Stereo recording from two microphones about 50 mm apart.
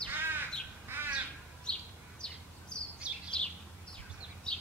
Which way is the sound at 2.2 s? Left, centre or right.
Centre.